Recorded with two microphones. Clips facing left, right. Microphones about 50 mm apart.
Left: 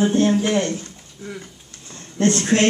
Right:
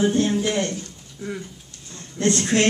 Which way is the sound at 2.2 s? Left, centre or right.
Left.